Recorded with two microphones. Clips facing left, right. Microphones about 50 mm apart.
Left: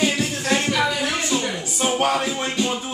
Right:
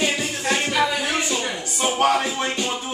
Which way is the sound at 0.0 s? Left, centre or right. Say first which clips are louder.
Left 1 dB; centre.